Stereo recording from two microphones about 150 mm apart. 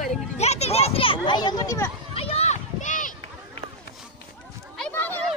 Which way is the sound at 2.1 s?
40° left (ahead or behind).